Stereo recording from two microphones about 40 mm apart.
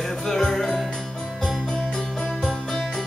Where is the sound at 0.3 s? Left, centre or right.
Centre.